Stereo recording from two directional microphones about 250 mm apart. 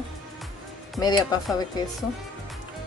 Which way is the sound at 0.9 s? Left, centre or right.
Centre.